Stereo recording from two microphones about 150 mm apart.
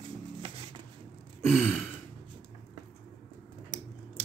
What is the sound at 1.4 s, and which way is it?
Speech, 10° left (ahead or behind).